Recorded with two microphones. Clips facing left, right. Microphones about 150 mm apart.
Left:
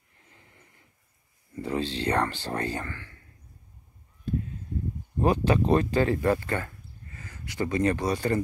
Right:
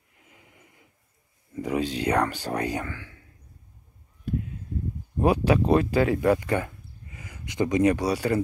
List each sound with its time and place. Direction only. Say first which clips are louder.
0.2 s a sound: right 2 dB; 10° right (ahead or behind)
1.5 s speech: right 3 dB; 10° right (ahead or behind)
5.2 s speech: right 2 dB; 10° right (ahead or behind)